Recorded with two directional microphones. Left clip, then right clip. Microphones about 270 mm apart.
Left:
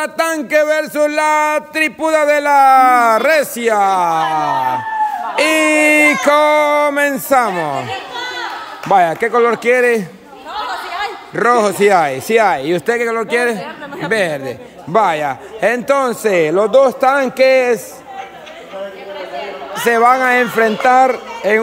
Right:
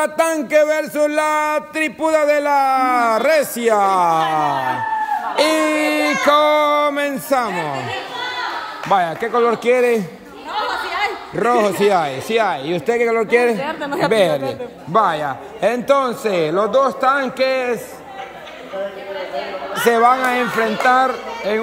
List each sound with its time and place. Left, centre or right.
0.0 s a man's voice: centre
8.9 s a man's voice: centre
13.6 s speech: right
14.1 s a man's voice: centre
19.9 s a man's voice: centre